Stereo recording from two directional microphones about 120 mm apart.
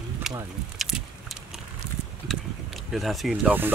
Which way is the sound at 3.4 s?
15° right (ahead or behind).